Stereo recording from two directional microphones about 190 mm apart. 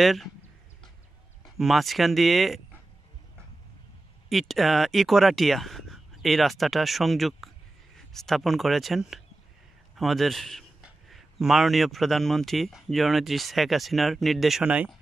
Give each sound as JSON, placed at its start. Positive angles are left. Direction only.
{"t": 0.0, "sound": "a man's voice", "side_deg": 0}
{"t": 1.4, "sound": "a man's voice", "side_deg": 0}
{"t": 4.3, "sound": "a man's voice", "side_deg": 0}